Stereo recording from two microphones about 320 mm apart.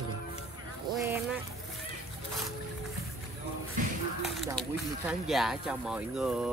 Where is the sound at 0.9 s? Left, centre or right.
Centre.